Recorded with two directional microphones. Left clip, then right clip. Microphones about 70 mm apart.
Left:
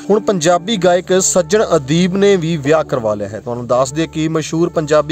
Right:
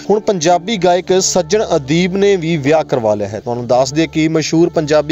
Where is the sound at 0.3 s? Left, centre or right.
Centre.